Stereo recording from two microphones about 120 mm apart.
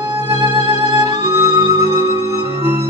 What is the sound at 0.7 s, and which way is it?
Music, 25° right (ahead or behind).